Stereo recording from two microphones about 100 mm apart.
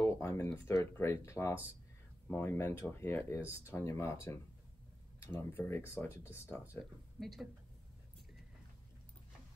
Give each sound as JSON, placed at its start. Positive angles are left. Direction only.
{"t": 0.0, "sound": "a sound", "side_deg": 30}
{"t": 0.7, "sound": "speech", "side_deg": 25}
{"t": 7.2, "sound": "speech", "side_deg": 0}